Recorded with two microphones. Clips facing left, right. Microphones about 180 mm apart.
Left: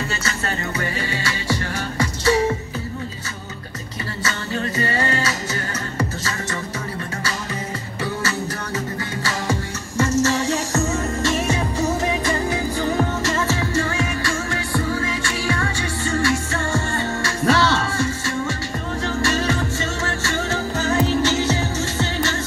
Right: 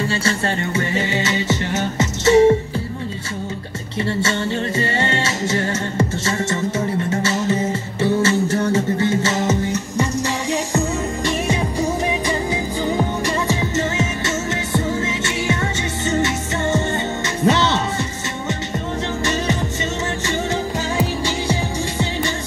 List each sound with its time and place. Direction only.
0.7 s music: 25° right (ahead or behind)
4.2 s music: 25° right (ahead or behind)
12.1 s music: 15° right (ahead or behind)
19.2 s music: 20° right (ahead or behind)
20.9 s music: 10° right (ahead or behind)